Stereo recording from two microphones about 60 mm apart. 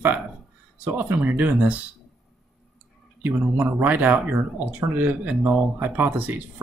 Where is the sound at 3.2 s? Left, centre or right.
Right.